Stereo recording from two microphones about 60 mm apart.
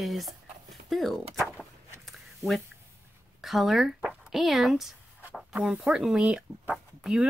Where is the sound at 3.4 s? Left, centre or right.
Centre.